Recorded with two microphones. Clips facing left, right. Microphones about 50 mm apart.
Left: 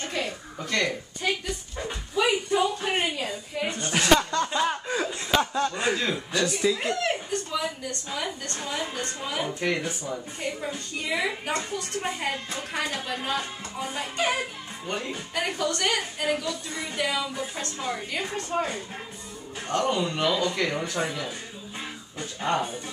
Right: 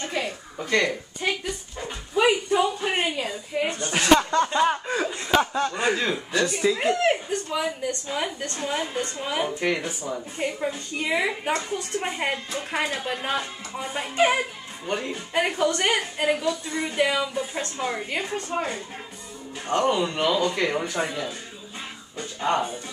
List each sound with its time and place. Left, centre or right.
0.1 s a woman's voice: centre
3.9 s speech: centre
4.5 s chuckle: centre
6.1 s speech: centre
7.0 s a sound: right
8.1 s a woman's voice: right
9.6 s speech: centre
10.4 s a woman's voice: right
14.9 s speech: centre
15.3 s a woman's voice: right
19.7 s speech: centre
22.4 s speech: centre